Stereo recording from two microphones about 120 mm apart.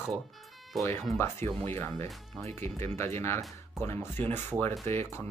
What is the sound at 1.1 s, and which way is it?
Speech, 20° left (ahead or behind).